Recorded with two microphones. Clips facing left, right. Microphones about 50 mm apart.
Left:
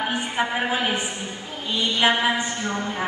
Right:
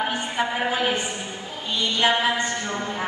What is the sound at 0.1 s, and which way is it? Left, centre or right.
A woman's voice, centre.